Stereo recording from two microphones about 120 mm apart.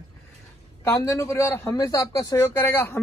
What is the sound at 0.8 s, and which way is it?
Speech, 25° left (ahead or behind).